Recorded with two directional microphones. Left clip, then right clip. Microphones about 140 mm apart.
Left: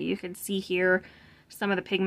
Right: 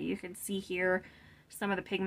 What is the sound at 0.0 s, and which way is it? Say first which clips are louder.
A woman's voice: left 6 dB; 35° left (ahead or behind).